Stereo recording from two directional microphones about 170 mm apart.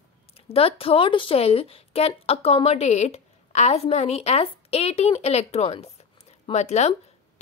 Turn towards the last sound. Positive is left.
turn(degrees=40)  # may be behind; listen again after turning